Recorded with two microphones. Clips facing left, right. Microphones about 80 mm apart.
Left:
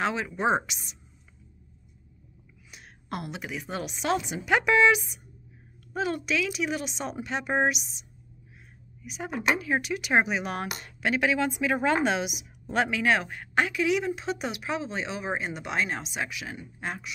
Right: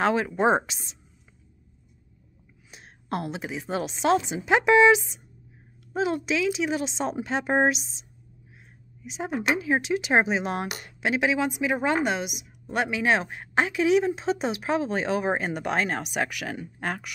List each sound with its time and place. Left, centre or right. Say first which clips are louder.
0.0 s speech: right 5 dB; right
2.7 s a woman's voice: right 5 dB; right
9.1 s speech: right 1 dB; right; by 12.4 s centre
12.6 s speech: even; centre; by 17.1 s right